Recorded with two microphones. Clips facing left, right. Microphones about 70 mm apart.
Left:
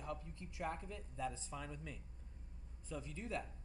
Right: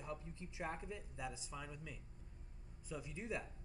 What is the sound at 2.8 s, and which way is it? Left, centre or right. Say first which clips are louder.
Speech: even; centre.